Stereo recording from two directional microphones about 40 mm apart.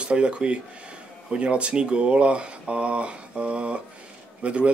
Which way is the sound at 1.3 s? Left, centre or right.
Right.